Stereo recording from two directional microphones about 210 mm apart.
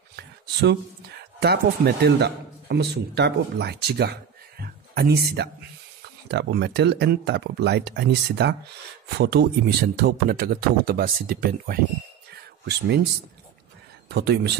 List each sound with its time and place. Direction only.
0.1 s speech: 55° right (ahead or behind)
14.0 s speech: 50° right (ahead or behind)